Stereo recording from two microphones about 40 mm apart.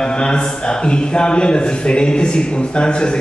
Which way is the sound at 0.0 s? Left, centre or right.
Left.